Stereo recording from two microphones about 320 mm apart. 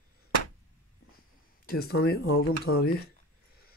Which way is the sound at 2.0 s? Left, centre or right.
Left.